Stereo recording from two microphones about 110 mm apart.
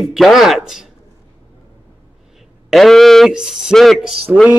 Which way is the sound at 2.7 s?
Centre (ahead or behind).